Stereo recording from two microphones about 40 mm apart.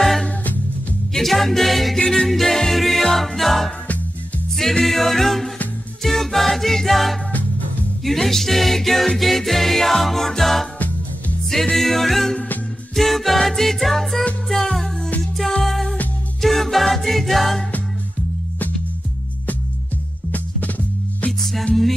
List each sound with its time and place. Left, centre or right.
1.1 s music: centre
2.0 s a capella: centre
2.2 s music: centre
21.3 s music: centre